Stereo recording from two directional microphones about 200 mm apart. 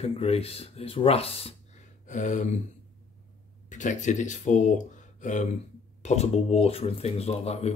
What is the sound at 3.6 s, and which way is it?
Speech, 40° left (ahead or behind).